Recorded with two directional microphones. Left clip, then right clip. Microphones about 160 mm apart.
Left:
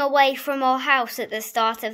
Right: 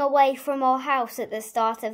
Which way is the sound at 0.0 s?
15° right (ahead or behind).